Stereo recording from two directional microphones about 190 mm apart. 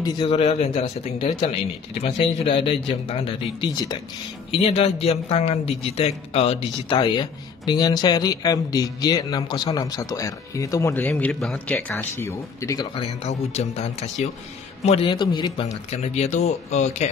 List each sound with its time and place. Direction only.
0.0 s a man's voice: 20° left (ahead or behind)
0.3 s a man's voice: 35° left (ahead or behind)
4.5 s a man's voice: 30° left (ahead or behind); by 12.8 s 15° left (ahead or behind)
12.9 s speech: 35° left (ahead or behind)